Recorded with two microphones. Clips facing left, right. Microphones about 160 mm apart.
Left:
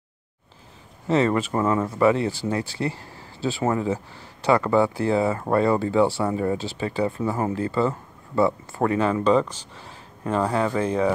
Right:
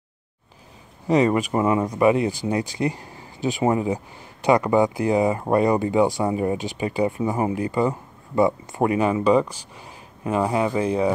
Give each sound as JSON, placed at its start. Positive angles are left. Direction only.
{"t": 1.0, "sound": "speech", "side_deg": -15}